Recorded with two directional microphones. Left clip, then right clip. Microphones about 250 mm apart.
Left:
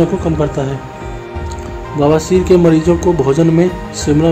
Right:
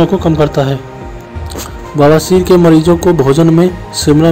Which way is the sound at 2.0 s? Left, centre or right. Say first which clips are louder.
Right 4 dB; centre.